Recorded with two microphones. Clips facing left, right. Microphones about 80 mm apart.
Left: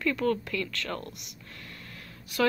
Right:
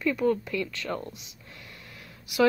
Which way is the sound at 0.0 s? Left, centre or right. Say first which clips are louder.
Right 2 dB; centre.